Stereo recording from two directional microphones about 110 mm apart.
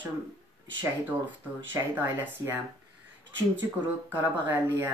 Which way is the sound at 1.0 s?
15° right (ahead or behind).